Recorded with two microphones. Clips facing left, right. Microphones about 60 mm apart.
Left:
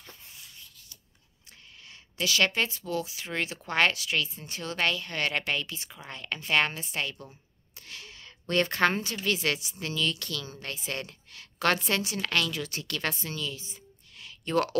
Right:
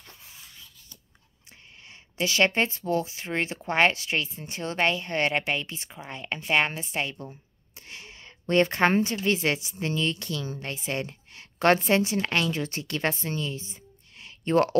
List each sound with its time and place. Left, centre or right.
1.9 s a woman's voice: right